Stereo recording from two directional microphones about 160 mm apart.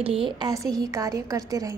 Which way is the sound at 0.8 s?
20° right (ahead or behind).